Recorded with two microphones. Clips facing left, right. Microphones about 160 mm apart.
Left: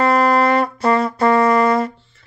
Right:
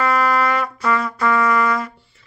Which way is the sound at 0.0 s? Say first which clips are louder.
Left 4 dB; 30° left (ahead or behind).